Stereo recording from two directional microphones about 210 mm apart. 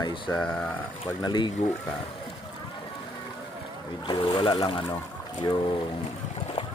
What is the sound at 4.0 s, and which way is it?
Speech, 20° left (ahead or behind).